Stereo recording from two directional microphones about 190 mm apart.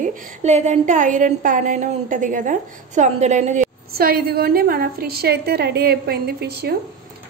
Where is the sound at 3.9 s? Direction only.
50° right (ahead or behind).